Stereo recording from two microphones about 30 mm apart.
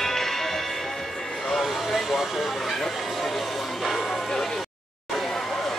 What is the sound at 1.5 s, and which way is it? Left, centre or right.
Vehicle, centre.